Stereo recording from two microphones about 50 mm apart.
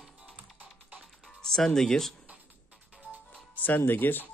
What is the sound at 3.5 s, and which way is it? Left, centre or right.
Speech, left.